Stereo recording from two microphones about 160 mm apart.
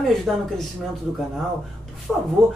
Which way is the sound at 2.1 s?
Centre (ahead or behind).